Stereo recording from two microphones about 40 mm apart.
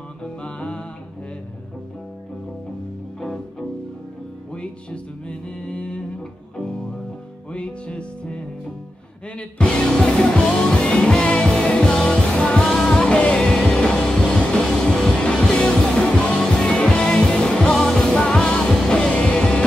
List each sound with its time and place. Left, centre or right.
0.2 s music: left
3.2 s music: centre
4.6 s music: left
7.5 s music: left
9.4 s music: left
16.6 s music: left